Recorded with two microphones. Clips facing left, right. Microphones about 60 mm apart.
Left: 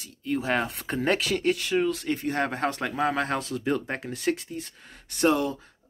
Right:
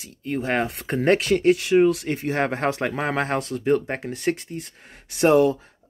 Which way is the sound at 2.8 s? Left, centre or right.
Right.